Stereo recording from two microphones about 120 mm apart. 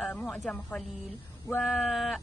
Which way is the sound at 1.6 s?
Centre (ahead or behind).